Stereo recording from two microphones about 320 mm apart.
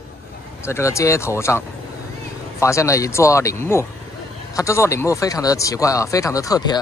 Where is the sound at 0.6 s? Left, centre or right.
Centre.